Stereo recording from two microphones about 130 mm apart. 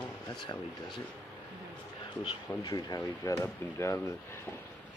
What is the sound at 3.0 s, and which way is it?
Speech, 20° left (ahead or behind).